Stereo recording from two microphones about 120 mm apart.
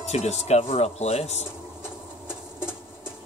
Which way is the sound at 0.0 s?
65° left (ahead or behind).